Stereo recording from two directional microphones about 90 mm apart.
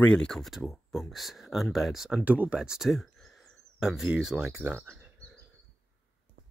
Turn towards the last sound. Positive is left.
turn(degrees=-10)  # may be behind; listen again after turning